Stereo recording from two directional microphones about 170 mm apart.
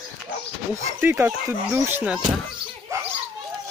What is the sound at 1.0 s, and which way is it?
Speech, 15° right (ahead or behind).